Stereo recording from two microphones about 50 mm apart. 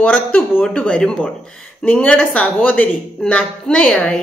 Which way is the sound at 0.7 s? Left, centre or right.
Centre.